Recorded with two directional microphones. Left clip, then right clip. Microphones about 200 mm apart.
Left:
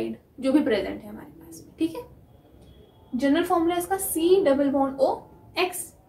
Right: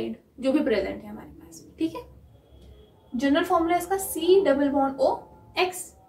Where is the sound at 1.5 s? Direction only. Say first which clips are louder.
Left 1 dB; 10° left (ahead or behind).